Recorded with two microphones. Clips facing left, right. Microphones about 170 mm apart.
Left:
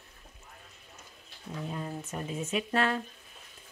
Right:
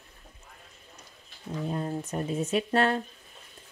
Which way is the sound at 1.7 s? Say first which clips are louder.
Right 6 dB; 35° right (ahead or behind).